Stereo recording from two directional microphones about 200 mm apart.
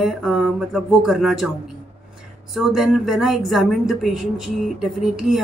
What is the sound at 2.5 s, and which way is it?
Speech, centre (ahead or behind).